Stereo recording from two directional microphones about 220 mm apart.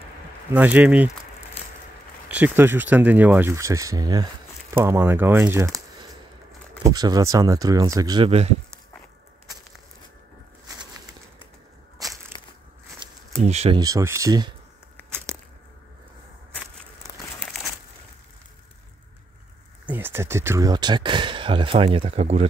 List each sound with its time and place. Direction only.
0.5 s speech: 5° right (ahead or behind)
2.2 s speech: 10° right (ahead or behind); by 8.5 s 25° right (ahead or behind)
12.3 s crushing: 20° left (ahead or behind)
13.4 s speech: 30° right (ahead or behind)
13.7 s speech: 15° right (ahead or behind)
17.4 s a sound: centre (ahead or behind)
19.9 s speech: 10° right (ahead or behind); by 22.5 s 30° right (ahead or behind)